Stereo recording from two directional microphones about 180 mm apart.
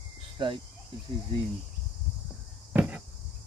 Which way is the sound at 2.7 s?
10° right (ahead or behind).